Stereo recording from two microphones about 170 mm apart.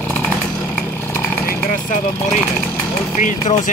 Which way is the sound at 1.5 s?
55° left (ahead or behind).